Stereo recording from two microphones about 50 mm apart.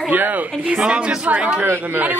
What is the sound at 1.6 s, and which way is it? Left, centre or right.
Speech, right.